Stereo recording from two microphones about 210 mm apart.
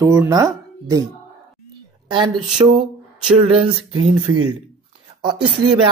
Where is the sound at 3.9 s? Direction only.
90° right.